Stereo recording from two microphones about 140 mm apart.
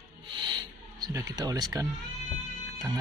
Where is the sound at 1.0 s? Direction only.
25° right (ahead or behind).